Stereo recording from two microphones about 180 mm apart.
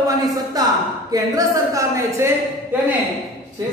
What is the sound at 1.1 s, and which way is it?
Speech, 20° right (ahead or behind).